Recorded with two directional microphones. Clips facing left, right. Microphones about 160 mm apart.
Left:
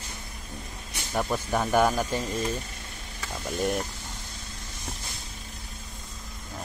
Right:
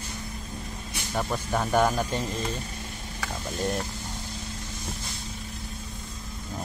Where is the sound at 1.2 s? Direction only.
5° left (ahead or behind).